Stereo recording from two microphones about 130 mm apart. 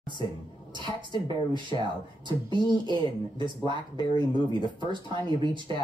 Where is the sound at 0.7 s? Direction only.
35° right (ahead or behind).